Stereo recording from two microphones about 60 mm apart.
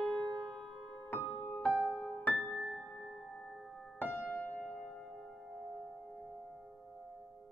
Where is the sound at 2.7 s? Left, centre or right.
Centre.